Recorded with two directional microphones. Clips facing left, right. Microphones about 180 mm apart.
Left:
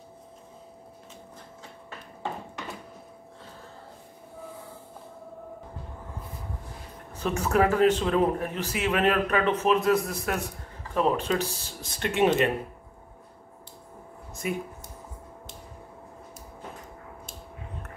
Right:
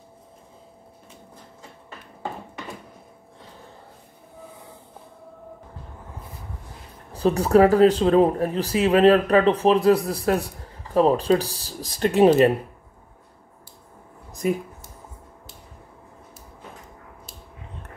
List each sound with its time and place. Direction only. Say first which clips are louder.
7.1 s speech: right 8 dB; 35° right (ahead or behind)
14.4 s speech: right 7 dB; 35° right (ahead or behind)